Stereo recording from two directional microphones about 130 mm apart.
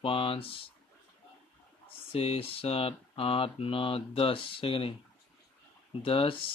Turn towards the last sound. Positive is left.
turn(degrees=45)  # may be behind; listen again after turning